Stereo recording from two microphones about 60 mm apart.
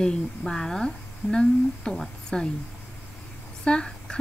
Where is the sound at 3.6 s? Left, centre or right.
Centre.